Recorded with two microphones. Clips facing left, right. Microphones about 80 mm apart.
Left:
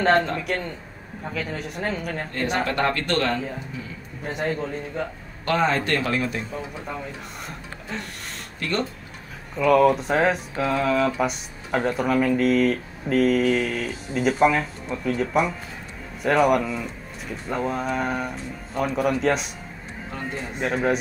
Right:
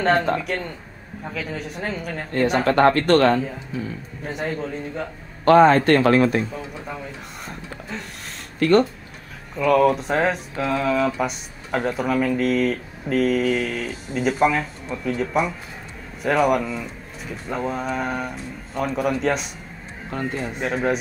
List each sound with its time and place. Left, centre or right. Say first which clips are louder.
0.0 s speech: right 1 dB; centre
2.6 s speech: right 10 dB; right
4.2 s speech: left 1 dB; centre
5.4 s speech: right 9 dB; right
7.9 s speech: left 1 dB; centre
8.5 s speech: right 10 dB; right
9.6 s speech: even; centre
20.5 s speech: left 1 dB; centre